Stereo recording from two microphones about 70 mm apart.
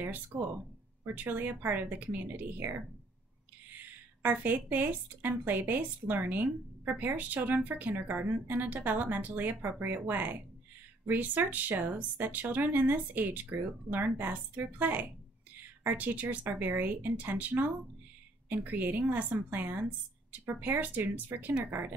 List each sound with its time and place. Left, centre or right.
0.3 s speech: centre
1.0 s speech: right
3.7 s speech: right
6.8 s speech: right